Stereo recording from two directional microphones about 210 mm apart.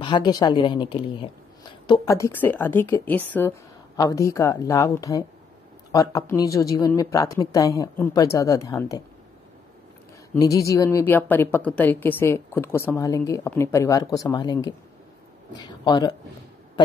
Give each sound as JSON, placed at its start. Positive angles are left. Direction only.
{"t": 0.0, "sound": "a woman's voice", "side_deg": 20}
{"t": 10.3, "sound": "a woman's voice", "side_deg": 15}